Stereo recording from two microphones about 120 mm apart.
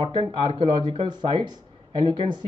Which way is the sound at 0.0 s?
45° right (ahead or behind).